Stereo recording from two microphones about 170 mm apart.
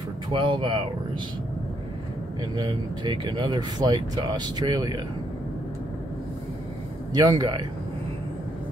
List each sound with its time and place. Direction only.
0.3 s speech: 30° right (ahead or behind)
2.5 s speech: 25° right (ahead or behind)
7.2 s speech: 25° right (ahead or behind)